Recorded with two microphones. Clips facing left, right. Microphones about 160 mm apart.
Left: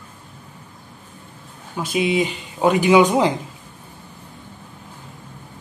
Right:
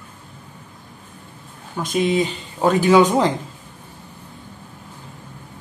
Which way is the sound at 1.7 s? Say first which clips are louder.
Right 1 dB; 10° left (ahead or behind).